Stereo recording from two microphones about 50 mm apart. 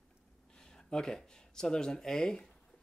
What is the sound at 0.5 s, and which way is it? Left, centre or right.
Speech, centre.